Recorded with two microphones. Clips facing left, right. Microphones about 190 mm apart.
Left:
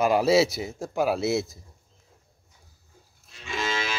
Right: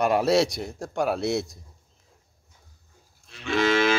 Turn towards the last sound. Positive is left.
turn(degrees=-60)  # may be behind; listen again after turning